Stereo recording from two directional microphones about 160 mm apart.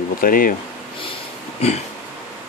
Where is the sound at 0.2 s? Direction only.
60° left (ahead or behind).